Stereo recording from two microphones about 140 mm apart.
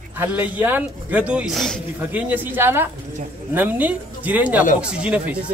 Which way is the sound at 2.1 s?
10° right (ahead or behind).